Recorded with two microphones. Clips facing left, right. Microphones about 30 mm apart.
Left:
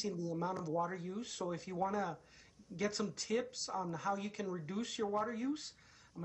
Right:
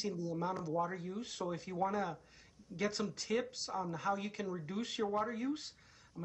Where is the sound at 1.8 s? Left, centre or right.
Right.